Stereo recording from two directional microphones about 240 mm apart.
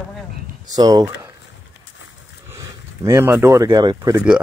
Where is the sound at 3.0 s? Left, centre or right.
Centre.